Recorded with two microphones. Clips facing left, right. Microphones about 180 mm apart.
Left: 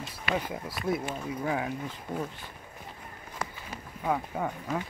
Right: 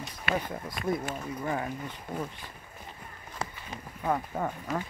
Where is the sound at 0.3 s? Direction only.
5° left (ahead or behind).